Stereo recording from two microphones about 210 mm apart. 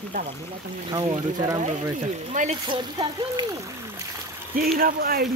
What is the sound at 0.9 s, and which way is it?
Speech, 20° right (ahead or behind).